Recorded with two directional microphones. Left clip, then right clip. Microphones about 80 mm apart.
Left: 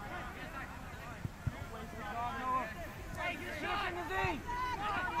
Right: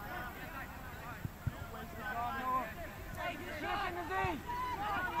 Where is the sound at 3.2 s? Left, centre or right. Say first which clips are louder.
Left 2 dB; left.